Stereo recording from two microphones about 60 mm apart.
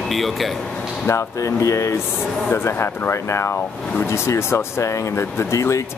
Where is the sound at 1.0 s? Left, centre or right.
Left.